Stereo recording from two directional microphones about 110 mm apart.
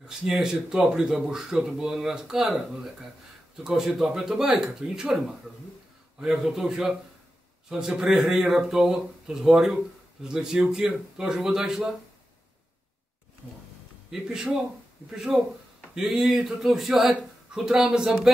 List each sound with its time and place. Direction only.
0.2 s speech: 5° right (ahead or behind)
14.1 s speech: 5° right (ahead or behind)